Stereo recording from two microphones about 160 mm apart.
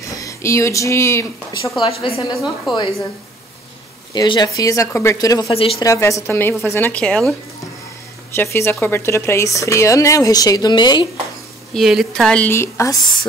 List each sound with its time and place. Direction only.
0.1 s speech: 20° left (ahead or behind)
1.8 s a woman's voice: 35° left (ahead or behind)
4.1 s speech: 25° left (ahead or behind)
5.5 s a woman's voice: 35° left (ahead or behind)
5.8 s a woman's voice: 20° left (ahead or behind); by 7.3 s 5° left (ahead or behind)
8.4 s a woman's voice: 15° left (ahead or behind)
11.7 s a woman's voice: centre (ahead or behind); by 12.9 s 15° left (ahead or behind)